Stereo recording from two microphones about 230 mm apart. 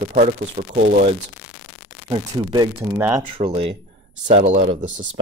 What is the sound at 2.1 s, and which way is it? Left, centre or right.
Speech, centre.